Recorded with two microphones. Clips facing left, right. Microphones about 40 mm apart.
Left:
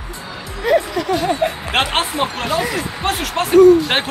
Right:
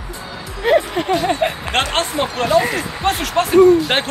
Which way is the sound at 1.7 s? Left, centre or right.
Centre.